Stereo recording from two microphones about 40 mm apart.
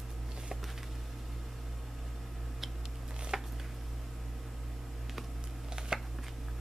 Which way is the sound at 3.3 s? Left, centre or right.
Centre.